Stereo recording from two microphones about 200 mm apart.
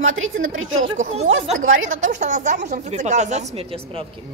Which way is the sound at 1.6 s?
80° right.